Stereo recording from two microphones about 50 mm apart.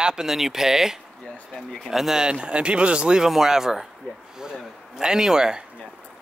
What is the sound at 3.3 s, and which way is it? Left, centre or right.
Speech, centre.